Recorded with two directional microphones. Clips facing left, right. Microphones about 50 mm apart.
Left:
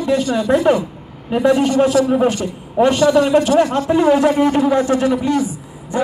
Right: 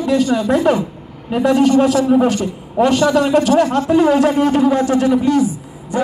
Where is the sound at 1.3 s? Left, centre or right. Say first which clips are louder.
Right 1 dB; left.